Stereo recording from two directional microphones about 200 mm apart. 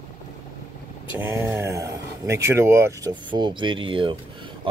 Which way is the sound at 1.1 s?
10° right (ahead or behind).